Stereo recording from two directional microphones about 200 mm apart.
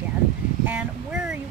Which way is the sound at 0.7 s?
5° right (ahead or behind).